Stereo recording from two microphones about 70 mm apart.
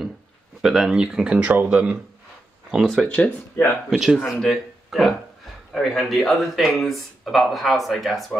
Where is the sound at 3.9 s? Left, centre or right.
Centre.